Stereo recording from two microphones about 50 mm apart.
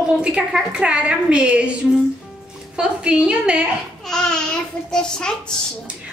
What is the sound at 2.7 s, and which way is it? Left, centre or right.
Speech, centre.